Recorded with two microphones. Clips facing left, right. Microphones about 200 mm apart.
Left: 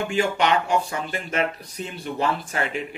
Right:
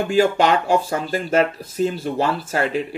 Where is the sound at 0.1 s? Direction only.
35° right (ahead or behind).